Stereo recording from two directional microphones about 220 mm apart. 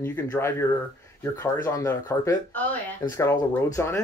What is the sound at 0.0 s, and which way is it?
Speech, 10° left (ahead or behind).